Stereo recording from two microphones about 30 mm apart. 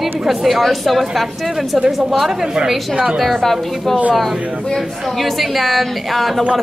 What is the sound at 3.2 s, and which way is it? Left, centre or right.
Speech, centre.